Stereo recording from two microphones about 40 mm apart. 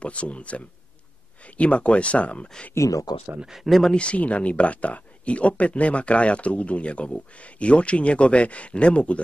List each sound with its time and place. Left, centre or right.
0.0 s speech: left
3.6 s speech: centre
3.9 s speech: left